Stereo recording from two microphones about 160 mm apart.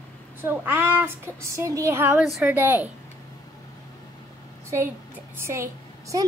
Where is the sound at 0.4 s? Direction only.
15° right (ahead or behind).